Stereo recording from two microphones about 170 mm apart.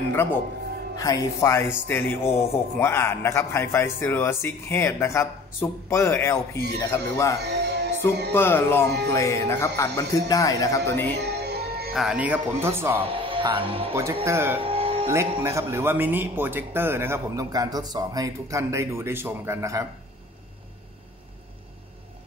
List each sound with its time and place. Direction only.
0.1 s speech: 15° left (ahead or behind)
7.4 s music: 80° right
8.3 s speech: 15° left (ahead or behind)
11.1 s music: 75° right (ahead or behind)
11.9 s speech: 5° right (ahead or behind)
13.1 s speech: 30° right (ahead or behind)
13.9 s speech: 15° right (ahead or behind)
14.6 s music: 35° right (ahead or behind)
15.0 s speech: 15° right (ahead or behind)